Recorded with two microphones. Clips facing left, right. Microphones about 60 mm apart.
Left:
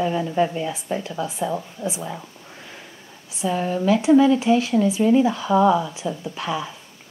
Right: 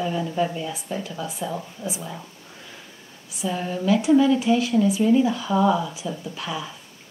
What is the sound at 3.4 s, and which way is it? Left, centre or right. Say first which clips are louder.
A woman's voice: left 4 dB; left.